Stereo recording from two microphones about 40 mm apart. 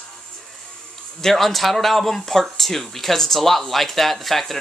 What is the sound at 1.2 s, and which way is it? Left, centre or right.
Speech, centre.